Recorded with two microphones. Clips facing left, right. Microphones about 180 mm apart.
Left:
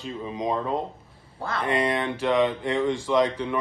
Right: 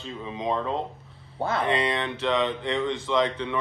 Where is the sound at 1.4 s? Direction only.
25° right (ahead or behind).